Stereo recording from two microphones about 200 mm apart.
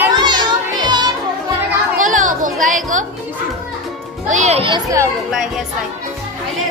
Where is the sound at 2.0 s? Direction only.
40° right (ahead or behind).